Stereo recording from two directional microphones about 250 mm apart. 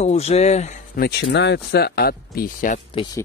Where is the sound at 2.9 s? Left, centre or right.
Left.